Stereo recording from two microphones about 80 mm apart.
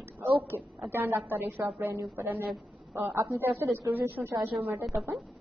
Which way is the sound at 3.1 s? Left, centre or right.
Right.